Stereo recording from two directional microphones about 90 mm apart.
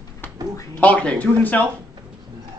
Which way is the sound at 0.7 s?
15° left (ahead or behind).